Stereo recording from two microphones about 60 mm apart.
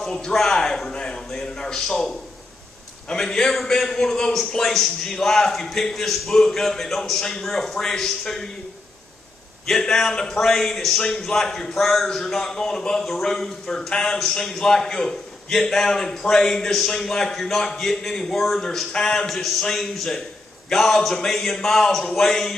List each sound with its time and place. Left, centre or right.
0.0 s a man's voice: centre
9.7 s a man's voice: centre